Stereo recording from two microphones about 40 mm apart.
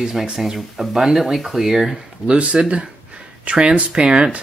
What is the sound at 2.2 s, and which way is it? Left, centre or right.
Speech, right.